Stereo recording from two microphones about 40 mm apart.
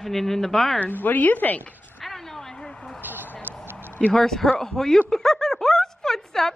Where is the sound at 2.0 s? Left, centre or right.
Centre.